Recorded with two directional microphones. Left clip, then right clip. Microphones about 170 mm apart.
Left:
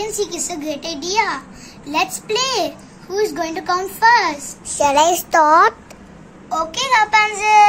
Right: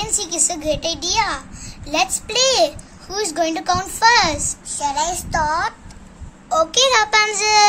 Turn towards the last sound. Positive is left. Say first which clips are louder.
# left 3 dB
turn(degrees=-65)  # may be behind; listen again after turning